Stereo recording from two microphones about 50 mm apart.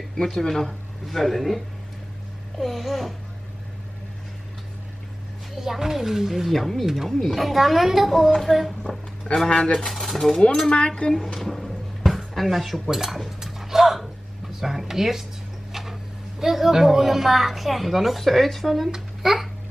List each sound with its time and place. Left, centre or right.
0.1 s speech: centre
2.6 s a woman's voice: centre
5.6 s speech: centre
6.5 s a woman's voice: centre
9.5 s speech: centre
9.8 s a woman's voice: centre
11.3 s dishes: centre
14.6 s a child's voice: centre